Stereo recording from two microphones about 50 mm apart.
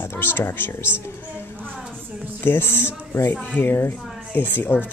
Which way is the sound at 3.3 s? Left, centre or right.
Left.